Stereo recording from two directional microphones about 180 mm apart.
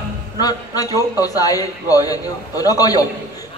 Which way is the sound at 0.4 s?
20° left (ahead or behind).